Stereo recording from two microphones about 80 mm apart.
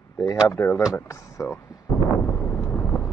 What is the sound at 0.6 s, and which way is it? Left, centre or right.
Speech, left.